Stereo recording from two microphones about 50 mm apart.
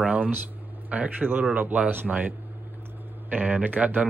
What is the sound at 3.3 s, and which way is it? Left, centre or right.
Speech, right.